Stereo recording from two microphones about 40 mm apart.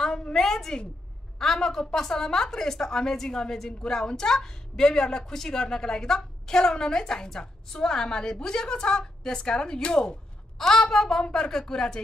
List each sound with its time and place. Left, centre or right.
0.3 s a woman's voice: centre
10.6 s a woman's voice: centre